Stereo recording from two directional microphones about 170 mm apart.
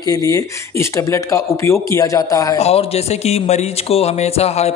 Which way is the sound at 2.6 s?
40° left (ahead or behind).